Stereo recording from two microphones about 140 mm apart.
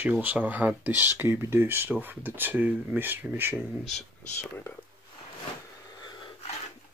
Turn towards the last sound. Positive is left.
turn(degrees=35)  # may be behind; listen again after turning